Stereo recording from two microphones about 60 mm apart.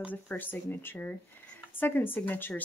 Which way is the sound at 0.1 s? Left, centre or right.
Left.